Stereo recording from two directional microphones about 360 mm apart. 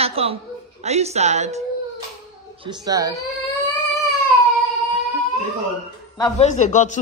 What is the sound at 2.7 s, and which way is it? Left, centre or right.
Speech, centre.